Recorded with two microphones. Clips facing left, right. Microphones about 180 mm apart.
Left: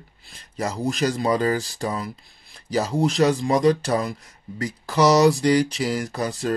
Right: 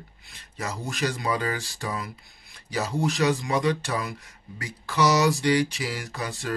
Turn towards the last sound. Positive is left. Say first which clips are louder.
# left 7 dB
turn(degrees=35)  # may be behind; listen again after turning